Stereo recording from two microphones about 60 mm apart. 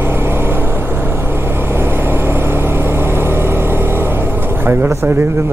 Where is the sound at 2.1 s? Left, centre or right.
Right.